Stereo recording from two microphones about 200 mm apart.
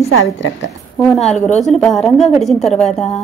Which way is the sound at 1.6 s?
Centre (ahead or behind).